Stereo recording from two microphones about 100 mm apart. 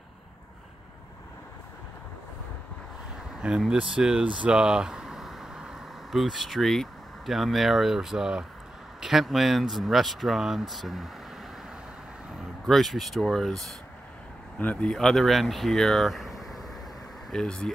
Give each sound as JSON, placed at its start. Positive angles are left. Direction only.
{"t": 3.3, "sound": "speech", "side_deg": -5}
{"t": 12.6, "sound": "speech", "side_deg": 0}